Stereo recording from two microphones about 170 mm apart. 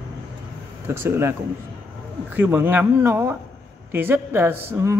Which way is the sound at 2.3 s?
10° right (ahead or behind).